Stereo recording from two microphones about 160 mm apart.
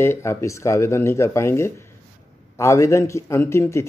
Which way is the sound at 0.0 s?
15° left (ahead or behind).